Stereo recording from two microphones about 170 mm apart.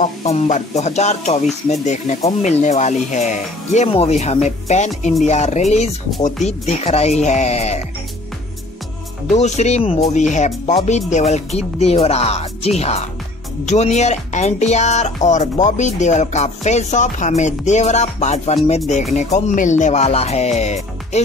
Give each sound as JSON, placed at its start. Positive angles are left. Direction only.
{"t": 0.0, "sound": "speech", "side_deg": 40}
{"t": 9.3, "sound": "speech", "side_deg": 40}